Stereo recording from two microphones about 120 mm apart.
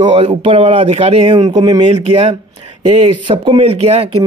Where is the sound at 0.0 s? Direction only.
45° right (ahead or behind); by 1.3 s 60° right (ahead or behind).